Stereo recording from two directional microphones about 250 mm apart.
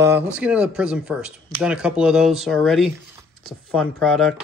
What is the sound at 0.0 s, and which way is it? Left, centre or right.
Speech, centre.